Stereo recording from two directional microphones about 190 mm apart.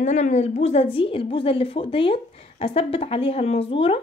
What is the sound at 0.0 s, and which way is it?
A woman's voice, 35° left (ahead or behind).